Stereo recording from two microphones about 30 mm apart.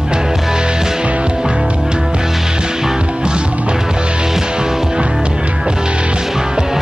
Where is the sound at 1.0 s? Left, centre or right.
Right.